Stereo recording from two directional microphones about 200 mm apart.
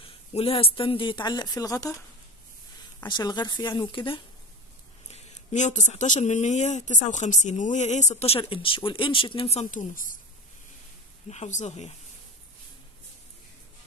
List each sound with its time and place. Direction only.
0.0 s speech: 30° left (ahead or behind)
3.1 s speech: 20° left (ahead or behind)
5.1 s speech: 35° left (ahead or behind)
11.2 s speech: 35° left (ahead or behind)